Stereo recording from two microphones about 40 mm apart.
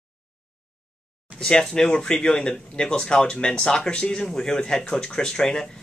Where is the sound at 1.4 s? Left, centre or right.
Left.